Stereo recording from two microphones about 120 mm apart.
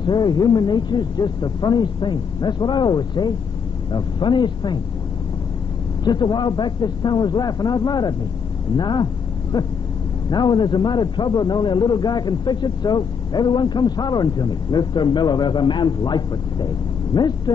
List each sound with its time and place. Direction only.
0.0 s a man's voice: 40° left (ahead or behind)
6.0 s a man's voice: 35° left (ahead or behind)